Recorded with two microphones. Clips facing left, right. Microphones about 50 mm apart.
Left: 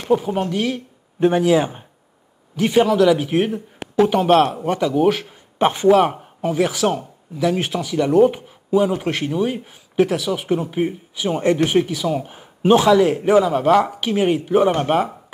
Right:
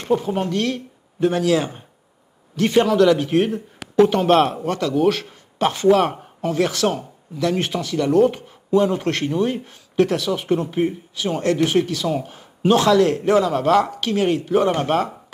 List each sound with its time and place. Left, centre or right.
0.0 s speech: centre
1.2 s speech: centre
4.6 s speech: centre
5.9 s speech: centre